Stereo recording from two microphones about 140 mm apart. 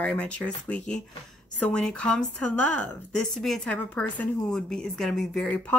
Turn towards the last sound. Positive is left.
turn(degrees=10)  # may be behind; listen again after turning